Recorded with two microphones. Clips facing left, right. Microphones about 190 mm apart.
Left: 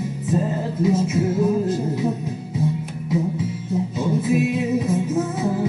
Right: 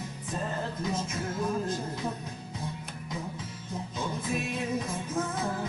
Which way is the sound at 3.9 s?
5° left (ahead or behind).